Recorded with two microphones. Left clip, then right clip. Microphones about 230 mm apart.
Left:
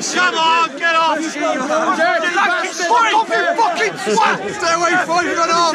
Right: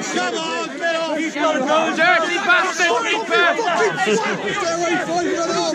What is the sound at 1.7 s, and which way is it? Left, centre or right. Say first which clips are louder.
A man's voice: left 1 dB; centre.